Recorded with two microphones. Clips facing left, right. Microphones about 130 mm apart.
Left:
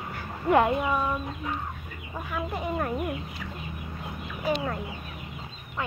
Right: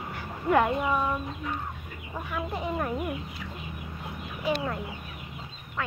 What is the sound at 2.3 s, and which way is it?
Speech, 5° left (ahead or behind).